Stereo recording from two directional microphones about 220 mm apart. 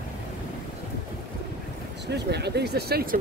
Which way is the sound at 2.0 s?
50° right (ahead or behind).